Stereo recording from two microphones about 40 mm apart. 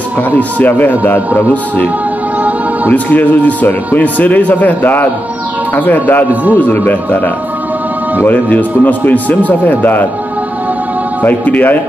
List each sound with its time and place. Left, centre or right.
0.4 s speech: left
0.7 s a man's voice: left
2.9 s a man's voice: left
8.3 s a man's voice: left
11.2 s a man's voice: left